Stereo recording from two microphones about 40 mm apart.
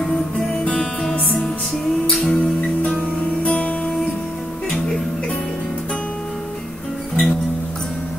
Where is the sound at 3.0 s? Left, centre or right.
Left.